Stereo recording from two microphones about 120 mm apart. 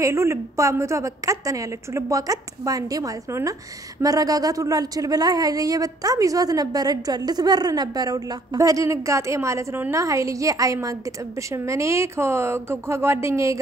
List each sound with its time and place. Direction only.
0.0 s speech: 25° right (ahead or behind)